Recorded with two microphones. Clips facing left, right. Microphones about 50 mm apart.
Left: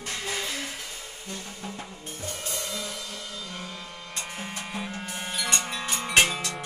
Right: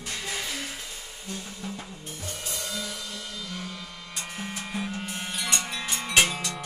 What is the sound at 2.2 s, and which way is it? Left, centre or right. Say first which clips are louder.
Music: left 2 dB; left.